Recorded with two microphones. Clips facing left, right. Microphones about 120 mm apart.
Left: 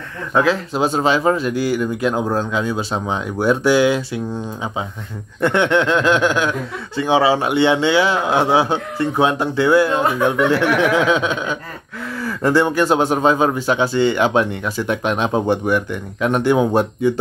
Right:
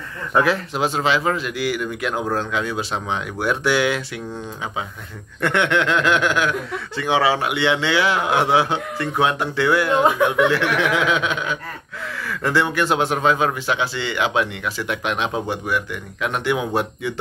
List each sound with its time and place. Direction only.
0.7 s a man's voice: 35° left (ahead or behind)
5.4 s a man's voice: 30° left (ahead or behind)
10.2 s speech: 15° right (ahead or behind)
10.5 s speech: 35° left (ahead or behind)